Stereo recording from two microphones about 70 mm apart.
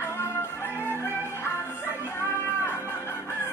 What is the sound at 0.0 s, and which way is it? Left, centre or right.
Music, left.